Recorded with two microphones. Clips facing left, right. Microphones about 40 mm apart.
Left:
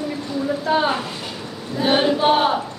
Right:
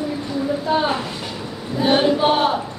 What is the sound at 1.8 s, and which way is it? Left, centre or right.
Choir, centre.